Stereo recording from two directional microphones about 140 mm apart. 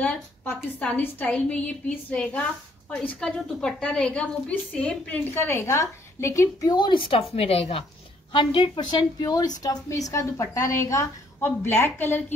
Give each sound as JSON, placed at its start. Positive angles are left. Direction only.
{"t": 0.0, "sound": "a woman's voice", "side_deg": 10}